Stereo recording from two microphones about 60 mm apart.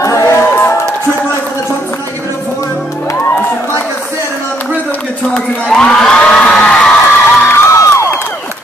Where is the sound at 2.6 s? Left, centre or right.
Left.